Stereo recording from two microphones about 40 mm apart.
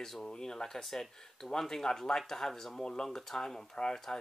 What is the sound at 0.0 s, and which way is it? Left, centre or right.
Speech, centre.